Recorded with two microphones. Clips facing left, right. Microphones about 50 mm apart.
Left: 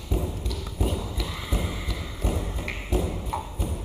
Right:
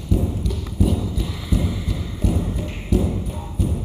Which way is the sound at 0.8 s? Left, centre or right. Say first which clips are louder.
Right 8 dB; left.